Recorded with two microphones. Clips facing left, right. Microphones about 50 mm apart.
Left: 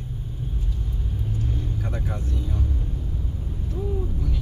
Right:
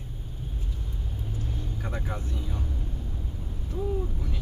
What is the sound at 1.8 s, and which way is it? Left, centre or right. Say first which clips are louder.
Vehicle: left 3 dB; centre.